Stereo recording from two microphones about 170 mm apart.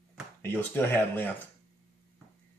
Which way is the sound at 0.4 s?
10° left (ahead or behind).